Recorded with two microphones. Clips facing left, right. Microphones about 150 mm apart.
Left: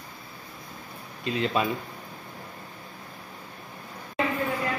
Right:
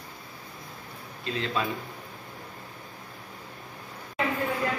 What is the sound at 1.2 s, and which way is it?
Speech, 15° left (ahead or behind).